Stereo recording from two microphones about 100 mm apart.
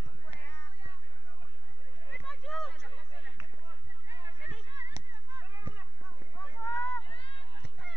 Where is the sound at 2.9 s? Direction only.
60° left (ahead or behind).